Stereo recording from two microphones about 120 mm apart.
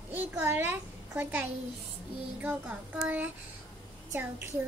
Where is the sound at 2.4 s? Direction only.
15° right (ahead or behind).